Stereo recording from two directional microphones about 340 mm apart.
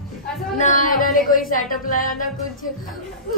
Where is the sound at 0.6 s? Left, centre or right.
Left.